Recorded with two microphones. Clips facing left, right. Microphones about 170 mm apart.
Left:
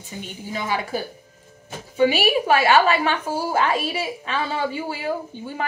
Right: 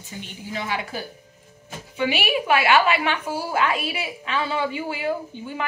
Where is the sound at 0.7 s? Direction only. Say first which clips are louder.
Left 7 dB; 40° left (ahead or behind).